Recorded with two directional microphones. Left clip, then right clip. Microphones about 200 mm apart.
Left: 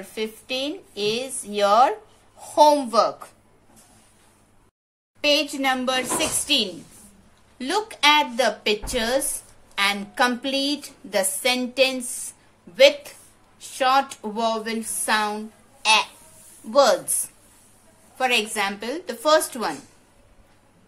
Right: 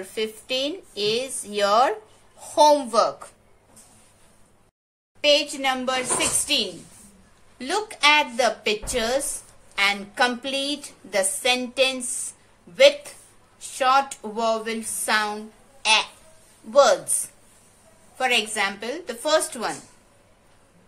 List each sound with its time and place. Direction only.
0.0 s a woman's voice: centre (ahead or behind)
5.2 s a woman's voice: 15° left (ahead or behind)